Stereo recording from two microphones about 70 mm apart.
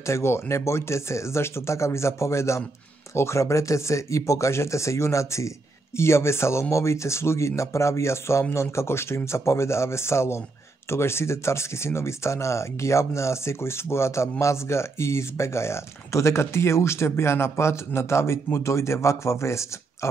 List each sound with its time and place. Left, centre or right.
0.0 s speech: left